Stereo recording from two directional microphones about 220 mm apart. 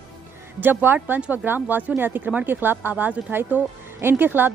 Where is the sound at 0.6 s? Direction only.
10° right (ahead or behind).